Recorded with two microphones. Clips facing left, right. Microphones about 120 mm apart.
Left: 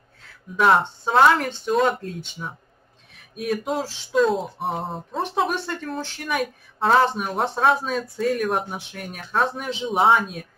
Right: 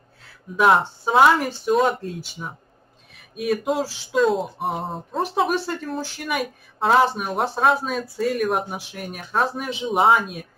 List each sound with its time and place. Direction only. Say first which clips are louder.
0.6 s speech: right 1 dB; centre (ahead or behind)